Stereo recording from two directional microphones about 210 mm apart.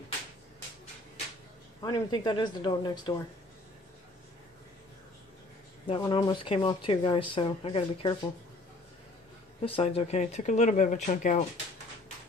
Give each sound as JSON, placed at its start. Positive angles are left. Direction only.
{"t": 1.8, "sound": "speech", "side_deg": 20}
{"t": 5.9, "sound": "speech", "side_deg": 20}
{"t": 9.6, "sound": "speech", "side_deg": 25}